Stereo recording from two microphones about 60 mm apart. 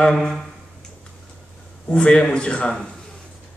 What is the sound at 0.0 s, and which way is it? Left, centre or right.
Speech, centre.